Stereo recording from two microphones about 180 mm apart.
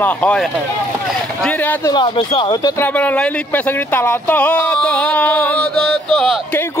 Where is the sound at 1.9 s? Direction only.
25° left (ahead or behind).